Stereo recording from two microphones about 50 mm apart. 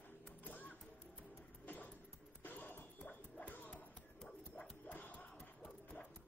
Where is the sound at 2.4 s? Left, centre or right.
Left.